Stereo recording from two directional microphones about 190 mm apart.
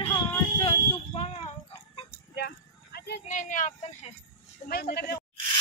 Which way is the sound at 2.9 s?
60° left (ahead or behind).